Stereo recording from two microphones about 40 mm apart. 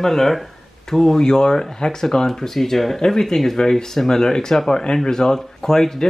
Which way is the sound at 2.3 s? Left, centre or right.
Centre.